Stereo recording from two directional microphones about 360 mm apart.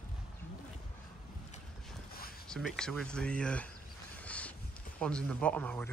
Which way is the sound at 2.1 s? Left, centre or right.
Left.